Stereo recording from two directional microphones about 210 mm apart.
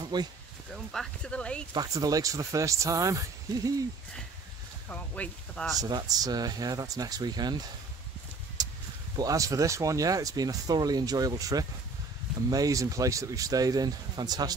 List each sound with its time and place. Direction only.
0.0 s a sound: 20° right (ahead or behind)
0.9 s speech: 5° left (ahead or behind)
1.7 s speech: 15° right (ahead or behind)
4.8 s speech: 5° left (ahead or behind)
5.8 s speech: 20° right (ahead or behind)
9.1 s speech: 15° right (ahead or behind)